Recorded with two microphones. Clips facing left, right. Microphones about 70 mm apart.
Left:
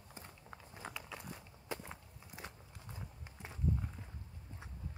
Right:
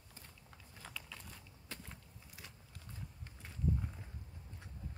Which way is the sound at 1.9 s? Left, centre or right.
Left.